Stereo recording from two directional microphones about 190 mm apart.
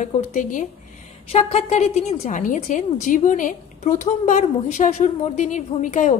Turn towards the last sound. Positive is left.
turn(degrees=40)  # may be behind; listen again after turning